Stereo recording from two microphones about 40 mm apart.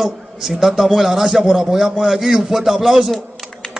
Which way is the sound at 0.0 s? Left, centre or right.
Centre.